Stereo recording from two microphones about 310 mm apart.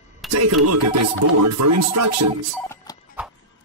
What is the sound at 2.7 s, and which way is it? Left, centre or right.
Music, centre.